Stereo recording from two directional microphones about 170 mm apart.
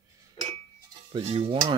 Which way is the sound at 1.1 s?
35° right (ahead or behind).